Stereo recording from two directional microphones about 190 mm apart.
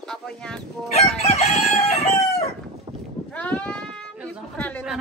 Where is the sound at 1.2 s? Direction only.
35° left (ahead or behind).